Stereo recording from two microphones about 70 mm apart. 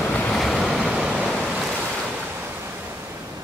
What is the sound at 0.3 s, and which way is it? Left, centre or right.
Waves, centre.